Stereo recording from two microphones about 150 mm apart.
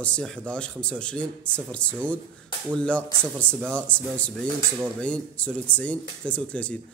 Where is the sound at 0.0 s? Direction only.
10° left (ahead or behind).